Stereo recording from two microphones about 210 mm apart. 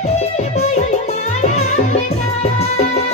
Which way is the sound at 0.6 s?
30° left (ahead or behind).